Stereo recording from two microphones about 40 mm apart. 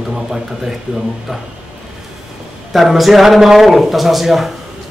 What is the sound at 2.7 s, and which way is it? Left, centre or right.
A man's voice, centre.